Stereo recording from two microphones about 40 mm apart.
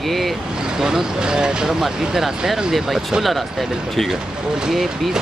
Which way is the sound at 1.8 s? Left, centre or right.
Centre.